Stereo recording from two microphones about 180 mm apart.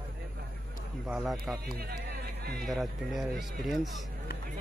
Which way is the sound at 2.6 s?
Centre (ahead or behind).